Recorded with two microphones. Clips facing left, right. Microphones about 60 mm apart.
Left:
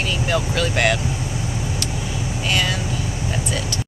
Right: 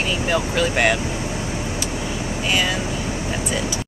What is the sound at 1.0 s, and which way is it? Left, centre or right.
Vehicle, right.